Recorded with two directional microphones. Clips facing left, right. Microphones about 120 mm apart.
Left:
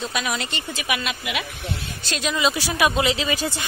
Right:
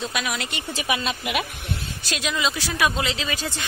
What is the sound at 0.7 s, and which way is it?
Speech, 30° right (ahead or behind).